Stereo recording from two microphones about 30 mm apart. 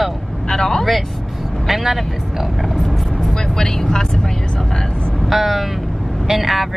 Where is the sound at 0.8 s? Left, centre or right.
Centre.